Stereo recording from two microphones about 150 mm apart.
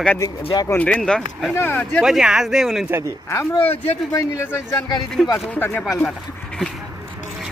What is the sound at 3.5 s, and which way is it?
Speech, 40° left (ahead or behind).